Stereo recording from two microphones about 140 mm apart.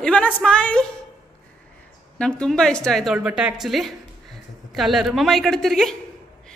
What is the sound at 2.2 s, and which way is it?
A woman's voice, 5° left (ahead or behind).